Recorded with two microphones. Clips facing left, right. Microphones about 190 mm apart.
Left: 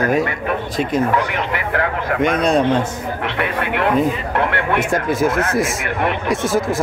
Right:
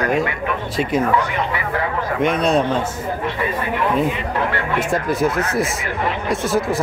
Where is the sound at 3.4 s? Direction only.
70° left (ahead or behind).